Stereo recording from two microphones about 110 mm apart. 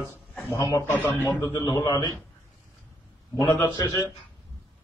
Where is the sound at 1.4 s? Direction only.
25° left (ahead or behind).